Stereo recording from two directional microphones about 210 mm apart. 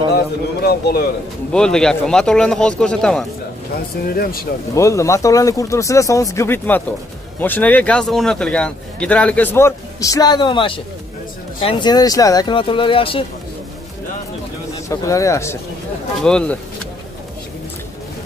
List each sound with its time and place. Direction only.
0.1 s a man's voice: 50° left (ahead or behind)
1.5 s speech: 5° left (ahead or behind)
4.1 s a man's voice: 45° left (ahead or behind)
4.7 s a man's voice: 15° left (ahead or behind)
14.9 s a man's voice: 15° left (ahead or behind)